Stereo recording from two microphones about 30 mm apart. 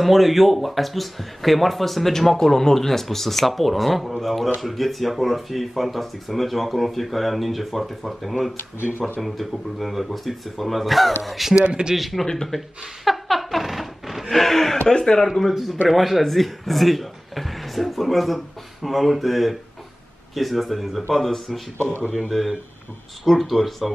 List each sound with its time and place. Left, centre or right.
0.0 s speech: centre
11.6 s speech: right
11.9 s speech: centre
12.4 s a sound: centre
14.3 s speech: centre
14.9 s speech: left
15.5 s speech: centre
22.3 s speech: centre